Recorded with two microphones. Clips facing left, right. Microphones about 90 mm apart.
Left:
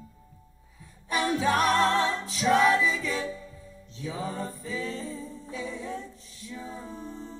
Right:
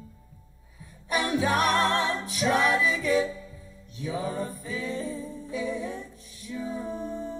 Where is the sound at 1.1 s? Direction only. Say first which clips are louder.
Even; 15° right (ahead or behind).